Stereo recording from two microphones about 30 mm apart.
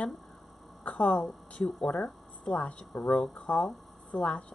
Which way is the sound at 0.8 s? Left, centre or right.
Left.